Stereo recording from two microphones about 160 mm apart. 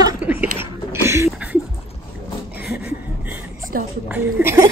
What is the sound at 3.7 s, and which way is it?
Speech, 60° right (ahead or behind).